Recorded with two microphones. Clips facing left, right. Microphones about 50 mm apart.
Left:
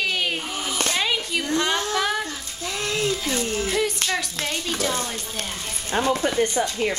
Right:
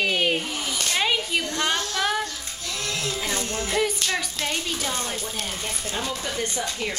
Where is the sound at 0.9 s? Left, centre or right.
Centre.